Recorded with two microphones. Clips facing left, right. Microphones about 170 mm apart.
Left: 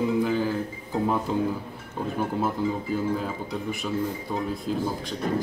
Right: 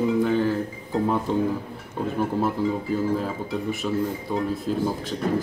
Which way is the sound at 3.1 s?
Centre (ahead or behind).